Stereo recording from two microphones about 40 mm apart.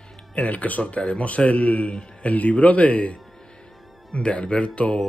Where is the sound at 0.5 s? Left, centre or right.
Left.